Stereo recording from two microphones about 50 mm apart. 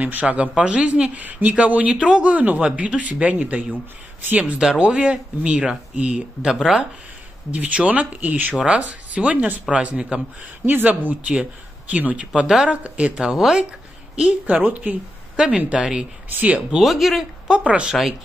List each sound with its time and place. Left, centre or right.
0.0 s speech: right; by 6.9 s centre
7.5 s speech: right
8.6 s speech: right
10.6 s speech: right; by 13.7 s centre
14.1 s a woman's voice: right
14.4 s speech: right
15.3 s speech: centre
16.3 s speech: right
16.7 s speech: centre
17.5 s speech: centre
17.9 s speech: centre